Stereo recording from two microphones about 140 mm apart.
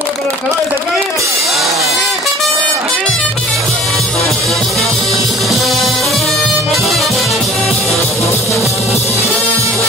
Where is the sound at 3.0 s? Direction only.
5° left (ahead or behind).